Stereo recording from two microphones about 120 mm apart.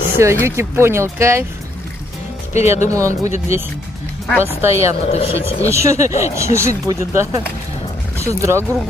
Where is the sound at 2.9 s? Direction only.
25° right (ahead or behind).